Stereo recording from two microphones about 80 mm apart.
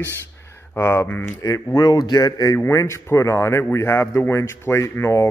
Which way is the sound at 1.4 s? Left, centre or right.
Left.